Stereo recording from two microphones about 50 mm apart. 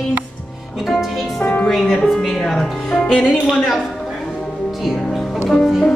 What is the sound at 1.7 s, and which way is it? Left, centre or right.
Speech, centre.